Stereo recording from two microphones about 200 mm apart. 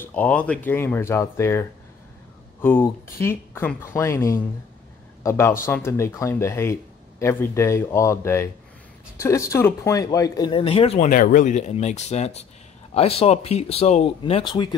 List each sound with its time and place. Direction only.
0.0 s speech: 10° left (ahead or behind); by 11.1 s 30° left (ahead or behind)
11.1 s speech: 40° left (ahead or behind); by 14.8 s 20° left (ahead or behind)